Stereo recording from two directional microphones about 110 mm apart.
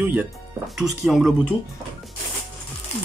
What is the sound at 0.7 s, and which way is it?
Speech, centre (ahead or behind).